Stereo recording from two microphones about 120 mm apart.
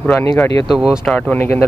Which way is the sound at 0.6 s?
5° right (ahead or behind).